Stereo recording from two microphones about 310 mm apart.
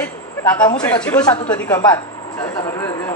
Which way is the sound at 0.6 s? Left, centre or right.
Centre.